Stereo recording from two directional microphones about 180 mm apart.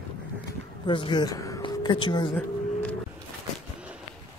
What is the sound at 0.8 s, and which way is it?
Speech, 25° left (ahead or behind).